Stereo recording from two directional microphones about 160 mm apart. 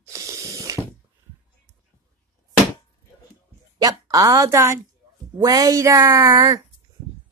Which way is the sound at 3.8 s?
25° right (ahead or behind).